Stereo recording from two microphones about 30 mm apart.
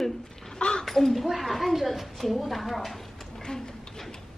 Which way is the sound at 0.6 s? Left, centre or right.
Left.